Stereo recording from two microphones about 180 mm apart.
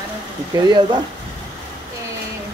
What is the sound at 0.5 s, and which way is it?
Speech, 20° right (ahead or behind).